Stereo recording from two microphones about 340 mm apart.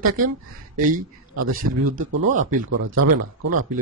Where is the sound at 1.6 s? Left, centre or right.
Right.